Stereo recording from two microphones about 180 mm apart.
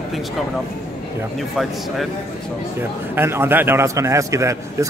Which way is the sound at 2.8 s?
15° right (ahead or behind).